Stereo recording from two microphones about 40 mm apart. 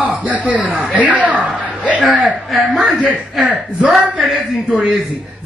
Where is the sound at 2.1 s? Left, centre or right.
Right.